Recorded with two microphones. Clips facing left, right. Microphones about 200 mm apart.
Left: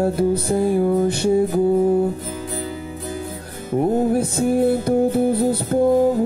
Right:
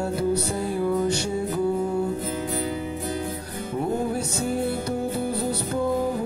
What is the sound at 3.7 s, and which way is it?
Music, 55° left (ahead or behind).